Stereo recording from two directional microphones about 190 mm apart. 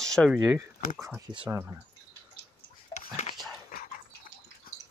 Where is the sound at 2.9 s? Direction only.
35° left (ahead or behind).